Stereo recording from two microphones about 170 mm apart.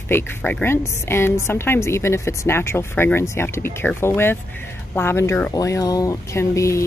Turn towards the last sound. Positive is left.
turn(degrees=15)  # may be behind; listen again after turning